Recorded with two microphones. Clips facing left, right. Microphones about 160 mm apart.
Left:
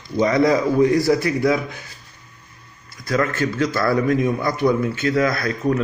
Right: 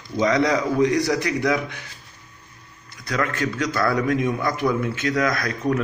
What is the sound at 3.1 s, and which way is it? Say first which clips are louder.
Speech: left 4 dB; 5° left (ahead or behind).